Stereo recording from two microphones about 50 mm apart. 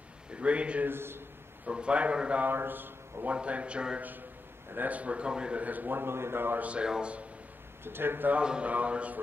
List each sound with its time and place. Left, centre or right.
0.3 s a man's voice: right
0.8 s a man's voice: right
1.7 s a man's voice: right
2.4 s speech: right
3.3 s a man's voice: right
4.7 s a man's voice: right
5.6 s a man's voice: right
6.6 s a man's voice: right
7.8 s a man's voice: right
8.4 s a man's voice: right